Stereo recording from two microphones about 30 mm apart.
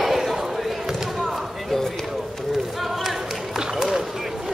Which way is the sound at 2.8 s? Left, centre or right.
Centre.